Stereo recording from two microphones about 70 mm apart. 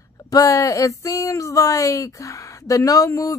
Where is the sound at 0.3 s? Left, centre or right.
Left.